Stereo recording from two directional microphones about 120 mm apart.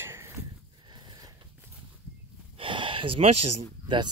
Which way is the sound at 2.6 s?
45° right (ahead or behind).